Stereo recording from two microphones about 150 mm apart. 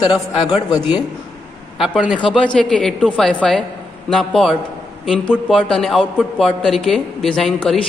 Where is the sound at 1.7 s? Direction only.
5° right (ahead or behind).